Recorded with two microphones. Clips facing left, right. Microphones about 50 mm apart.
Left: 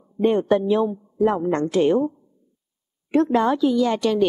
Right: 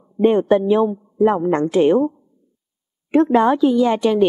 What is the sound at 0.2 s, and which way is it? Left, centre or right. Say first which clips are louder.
A woman's voice: right 4 dB; centre.